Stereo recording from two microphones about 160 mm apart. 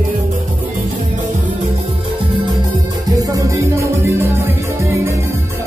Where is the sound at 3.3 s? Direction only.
20° right (ahead or behind).